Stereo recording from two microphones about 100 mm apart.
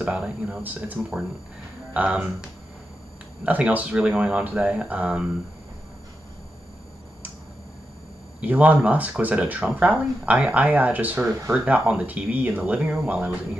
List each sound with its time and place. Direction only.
0.0 s speech: 10° right (ahead or behind)
8.4 s speech: 15° right (ahead or behind)